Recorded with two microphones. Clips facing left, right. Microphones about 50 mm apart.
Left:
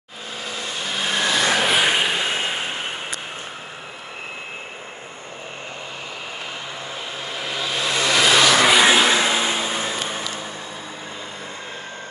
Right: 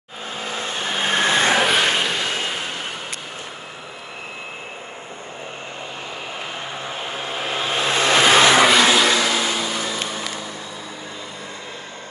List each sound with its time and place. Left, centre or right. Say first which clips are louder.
0.4 s vehicle: right 3 dB; right
1.7 s vehicle: even; centre
7.2 s vehicle: right 3 dB; right
8.8 s vehicle: even; left